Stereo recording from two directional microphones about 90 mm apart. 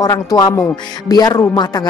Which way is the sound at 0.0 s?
40° left (ahead or behind).